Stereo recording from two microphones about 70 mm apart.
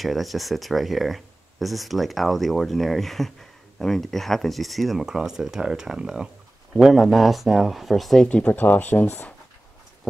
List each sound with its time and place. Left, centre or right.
0.0 s speech: centre
8.5 s speech: left